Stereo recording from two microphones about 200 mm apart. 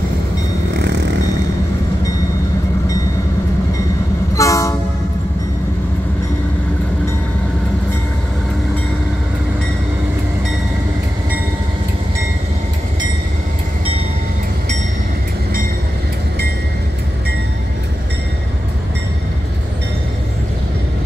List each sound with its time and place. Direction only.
4.4 s train: 15° left (ahead or behind)